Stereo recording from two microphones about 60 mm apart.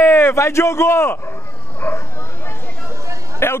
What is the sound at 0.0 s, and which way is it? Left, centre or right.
Speech, left.